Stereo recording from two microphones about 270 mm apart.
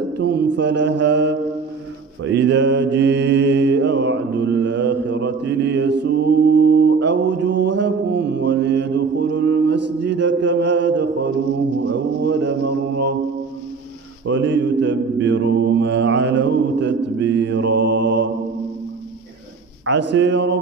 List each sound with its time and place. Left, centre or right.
0.2 s mantra: right
14.2 s mantra: right
19.9 s speech: right